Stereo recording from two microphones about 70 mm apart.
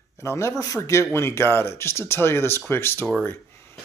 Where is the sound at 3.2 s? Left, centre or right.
Left.